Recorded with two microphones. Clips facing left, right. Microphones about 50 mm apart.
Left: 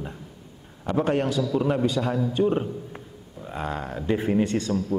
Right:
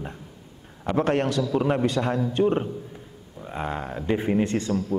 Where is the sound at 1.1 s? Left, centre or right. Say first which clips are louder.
Even; right.